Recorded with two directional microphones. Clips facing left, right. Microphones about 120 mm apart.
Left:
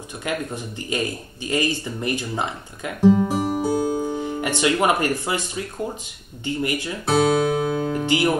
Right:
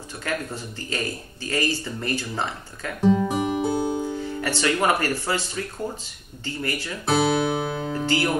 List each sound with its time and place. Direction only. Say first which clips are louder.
0.2 s speech: left 2 dB; 15° left (ahead or behind)
3.0 s music: left 4 dB; 5° left (ahead or behind)
4.2 s speech: left 3 dB; 15° left (ahead or behind)
7.1 s music: left 3 dB; centre (ahead or behind)
7.9 s speech: right 1 dB; 15° left (ahead or behind)